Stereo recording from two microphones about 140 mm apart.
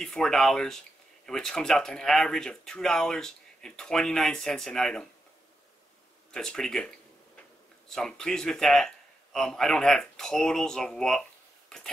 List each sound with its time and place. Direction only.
0.0 s speech: 5° left (ahead or behind)
6.3 s speech: 5° left (ahead or behind)
7.9 s speech: 5° left (ahead or behind)